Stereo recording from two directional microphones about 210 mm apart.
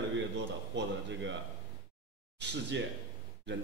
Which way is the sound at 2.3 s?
55° right (ahead or behind).